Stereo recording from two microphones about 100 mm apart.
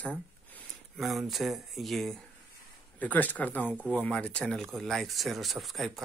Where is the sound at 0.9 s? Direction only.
Centre (ahead or behind).